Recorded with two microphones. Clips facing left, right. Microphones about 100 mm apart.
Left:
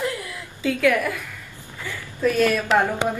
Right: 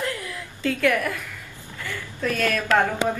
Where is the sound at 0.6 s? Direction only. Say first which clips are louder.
Left 2 dB; 5° left (ahead or behind).